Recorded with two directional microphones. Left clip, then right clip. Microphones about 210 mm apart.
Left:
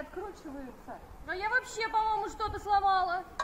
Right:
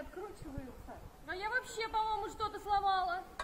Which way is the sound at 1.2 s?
5° right (ahead or behind).